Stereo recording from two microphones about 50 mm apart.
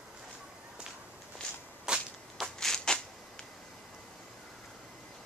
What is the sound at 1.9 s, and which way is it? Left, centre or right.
Whip, centre.